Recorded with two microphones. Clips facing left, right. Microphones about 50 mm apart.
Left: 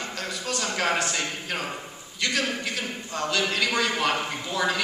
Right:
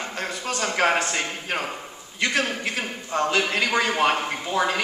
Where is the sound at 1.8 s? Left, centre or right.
Centre.